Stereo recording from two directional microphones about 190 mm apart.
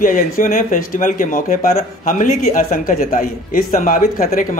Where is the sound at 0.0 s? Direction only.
45° left (ahead or behind).